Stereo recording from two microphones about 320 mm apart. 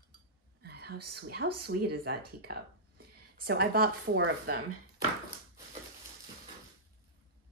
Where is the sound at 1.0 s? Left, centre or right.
Right.